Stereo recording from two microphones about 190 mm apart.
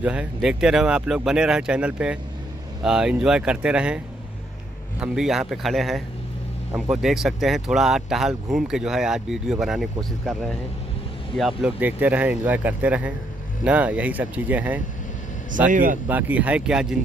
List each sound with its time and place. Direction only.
0.0 s speech: 5° right (ahead or behind)
5.0 s speech: 5° right (ahead or behind)
15.7 s speech: 45° right (ahead or behind)
16.1 s speech: 10° right (ahead or behind)